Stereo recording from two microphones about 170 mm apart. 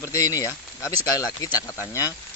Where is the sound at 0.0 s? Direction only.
20° left (ahead or behind).